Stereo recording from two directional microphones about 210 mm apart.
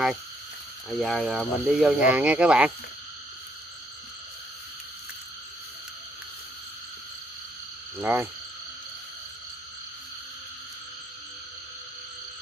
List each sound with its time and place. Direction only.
0.9 s speech: centre (ahead or behind)
8.0 s frog: 10° right (ahead or behind)